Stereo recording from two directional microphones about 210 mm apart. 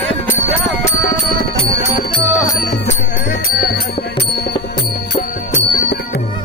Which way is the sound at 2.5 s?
40° left (ahead or behind).